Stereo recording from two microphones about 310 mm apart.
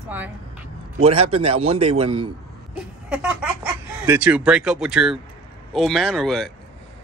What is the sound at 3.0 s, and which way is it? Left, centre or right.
Speech, centre.